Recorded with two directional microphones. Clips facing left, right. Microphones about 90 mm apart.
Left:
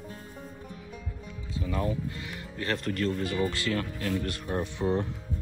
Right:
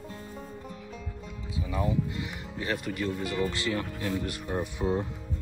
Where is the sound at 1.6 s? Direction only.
15° right (ahead or behind).